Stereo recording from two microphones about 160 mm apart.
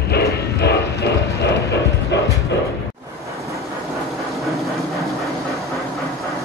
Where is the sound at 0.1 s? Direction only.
90° left.